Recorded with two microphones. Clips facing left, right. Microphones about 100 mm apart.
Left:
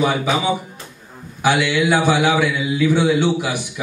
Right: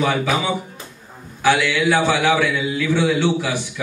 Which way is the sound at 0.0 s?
15° left (ahead or behind).